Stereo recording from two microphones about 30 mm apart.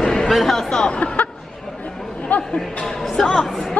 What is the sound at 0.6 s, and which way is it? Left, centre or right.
Speech, centre.